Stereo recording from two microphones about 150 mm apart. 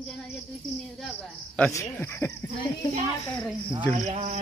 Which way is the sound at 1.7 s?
20° left (ahead or behind).